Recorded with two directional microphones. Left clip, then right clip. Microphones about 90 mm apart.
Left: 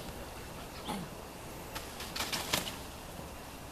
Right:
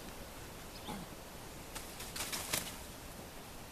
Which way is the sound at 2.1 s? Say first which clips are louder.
Left 6 dB; 20° right (ahead or behind).